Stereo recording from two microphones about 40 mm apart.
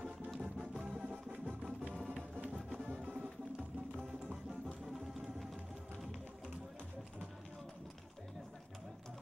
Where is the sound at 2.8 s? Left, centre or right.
Right.